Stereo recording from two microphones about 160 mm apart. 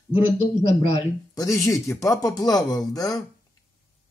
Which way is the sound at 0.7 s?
40° left (ahead or behind).